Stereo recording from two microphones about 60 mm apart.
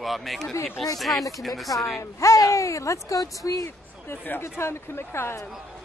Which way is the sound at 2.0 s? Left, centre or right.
Left.